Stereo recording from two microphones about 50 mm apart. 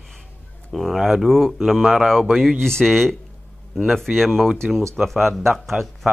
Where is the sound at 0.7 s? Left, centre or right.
Centre.